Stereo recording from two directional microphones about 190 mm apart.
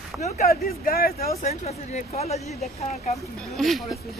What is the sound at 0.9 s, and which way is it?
Speech, 50° left (ahead or behind).